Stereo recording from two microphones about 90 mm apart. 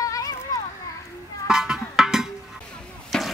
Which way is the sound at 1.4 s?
5° right (ahead or behind).